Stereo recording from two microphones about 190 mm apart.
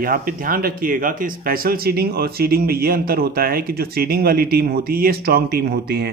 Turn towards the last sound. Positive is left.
turn(degrees=-55)  # may be behind; listen again after turning